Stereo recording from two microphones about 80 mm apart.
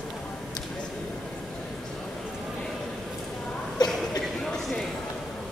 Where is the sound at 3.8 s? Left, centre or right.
Left.